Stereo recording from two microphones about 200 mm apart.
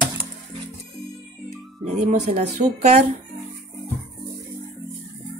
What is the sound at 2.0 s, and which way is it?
Speech, 35° right (ahead or behind).